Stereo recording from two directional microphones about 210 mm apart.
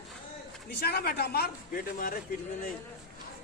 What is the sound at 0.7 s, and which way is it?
Speech, 50° left (ahead or behind).